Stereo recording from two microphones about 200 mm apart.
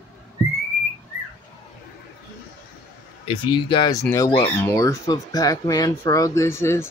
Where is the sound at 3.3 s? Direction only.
25° left (ahead or behind).